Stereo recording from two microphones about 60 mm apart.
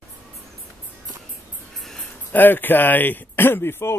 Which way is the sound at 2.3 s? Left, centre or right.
Left.